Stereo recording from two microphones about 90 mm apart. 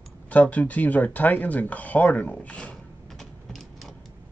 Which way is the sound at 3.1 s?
5° left (ahead or behind).